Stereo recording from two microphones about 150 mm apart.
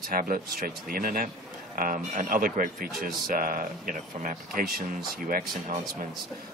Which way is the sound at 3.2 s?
70° right (ahead or behind).